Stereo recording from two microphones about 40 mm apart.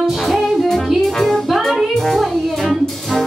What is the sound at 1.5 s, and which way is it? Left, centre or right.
Music, centre.